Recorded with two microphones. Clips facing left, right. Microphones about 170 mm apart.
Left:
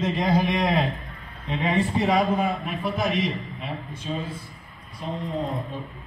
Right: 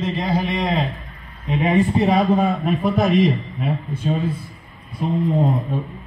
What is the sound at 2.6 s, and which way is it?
Speech, 40° right (ahead or behind).